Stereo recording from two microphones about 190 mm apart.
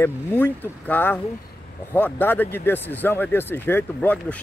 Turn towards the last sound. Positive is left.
turn(degrees=10)  # may be behind; listen again after turning